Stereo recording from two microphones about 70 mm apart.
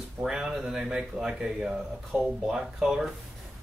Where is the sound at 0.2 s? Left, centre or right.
Centre.